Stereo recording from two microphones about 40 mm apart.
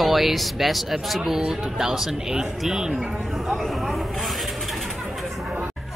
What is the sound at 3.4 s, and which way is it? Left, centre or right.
Speech, centre.